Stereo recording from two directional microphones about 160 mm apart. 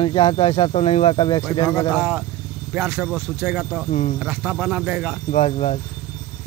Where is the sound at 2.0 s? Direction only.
5° right (ahead or behind).